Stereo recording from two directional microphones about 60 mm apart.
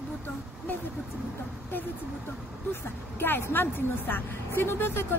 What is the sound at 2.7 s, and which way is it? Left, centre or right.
A woman's voice, left.